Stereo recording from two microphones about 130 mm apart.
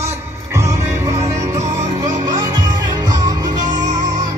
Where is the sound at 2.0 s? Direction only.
30° right (ahead or behind).